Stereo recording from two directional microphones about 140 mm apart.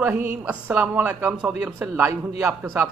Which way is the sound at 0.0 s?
10° right (ahead or behind).